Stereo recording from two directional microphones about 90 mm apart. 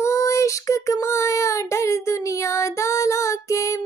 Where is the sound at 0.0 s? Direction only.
35° left (ahead or behind).